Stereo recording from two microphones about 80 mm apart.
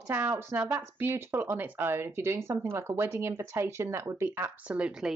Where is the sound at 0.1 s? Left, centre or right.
Right.